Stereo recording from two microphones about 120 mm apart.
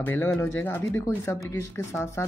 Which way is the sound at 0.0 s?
20° left (ahead or behind).